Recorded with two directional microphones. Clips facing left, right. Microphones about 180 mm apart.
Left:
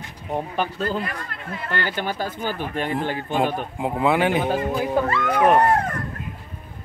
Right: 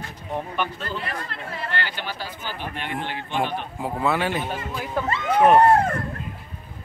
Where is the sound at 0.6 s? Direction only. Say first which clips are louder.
Left 4 dB; 40° left (ahead or behind).